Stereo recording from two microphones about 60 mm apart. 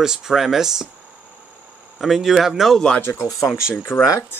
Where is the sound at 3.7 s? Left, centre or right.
Left.